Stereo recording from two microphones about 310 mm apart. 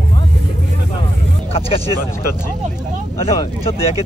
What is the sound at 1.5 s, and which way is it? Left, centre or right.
Speech, centre.